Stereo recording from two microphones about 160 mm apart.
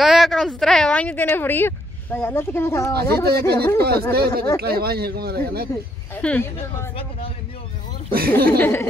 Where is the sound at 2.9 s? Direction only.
75° right (ahead or behind).